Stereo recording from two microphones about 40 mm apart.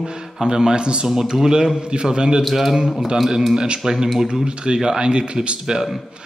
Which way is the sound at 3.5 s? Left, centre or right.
Right.